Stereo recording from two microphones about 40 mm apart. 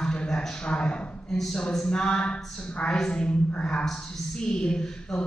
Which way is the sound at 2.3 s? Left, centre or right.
Centre.